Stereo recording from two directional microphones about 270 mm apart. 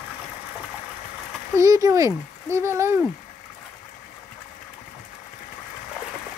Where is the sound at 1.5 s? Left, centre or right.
Centre.